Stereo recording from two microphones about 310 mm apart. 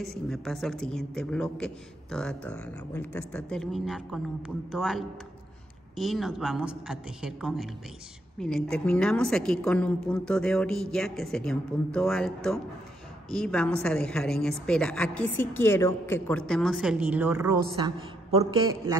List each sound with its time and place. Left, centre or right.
0.0 s a woman's voice: centre